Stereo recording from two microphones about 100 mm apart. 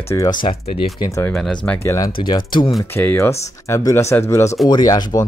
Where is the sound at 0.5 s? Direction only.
75° left (ahead or behind).